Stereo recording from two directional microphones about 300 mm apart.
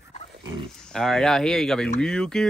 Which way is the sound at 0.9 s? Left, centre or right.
Centre.